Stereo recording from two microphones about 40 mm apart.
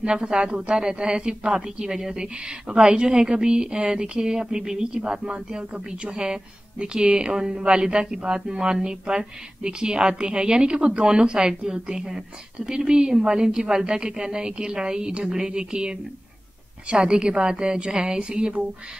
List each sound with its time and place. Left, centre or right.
0.0 s a woman's voice: right
16.9 s a woman's voice: right